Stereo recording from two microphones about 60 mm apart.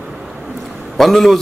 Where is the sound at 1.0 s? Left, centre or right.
Centre.